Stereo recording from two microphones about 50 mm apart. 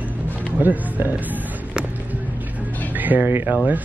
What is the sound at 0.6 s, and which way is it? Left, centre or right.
Speech, right.